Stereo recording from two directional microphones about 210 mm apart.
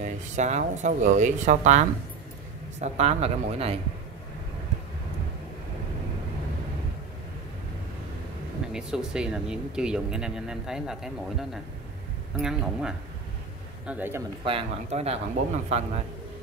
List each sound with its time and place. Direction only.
0.0 s speech: 35° right (ahead or behind)
8.7 s a man's voice: 5° right (ahead or behind)
14.4 s speech: 30° right (ahead or behind)